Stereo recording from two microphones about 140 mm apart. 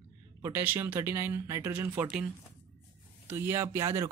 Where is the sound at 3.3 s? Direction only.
20° right (ahead or behind).